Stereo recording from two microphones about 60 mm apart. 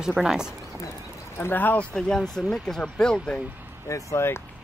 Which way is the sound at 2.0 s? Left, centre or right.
Centre.